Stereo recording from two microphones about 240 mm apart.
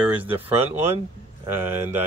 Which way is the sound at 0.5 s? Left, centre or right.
Centre.